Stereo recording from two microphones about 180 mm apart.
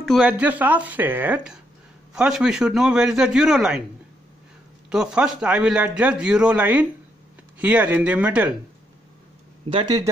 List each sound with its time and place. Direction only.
0.0 s a man's voice: 5° right (ahead or behind)
4.8 s a man's voice: 5° right (ahead or behind)
9.7 s speech: 25° right (ahead or behind)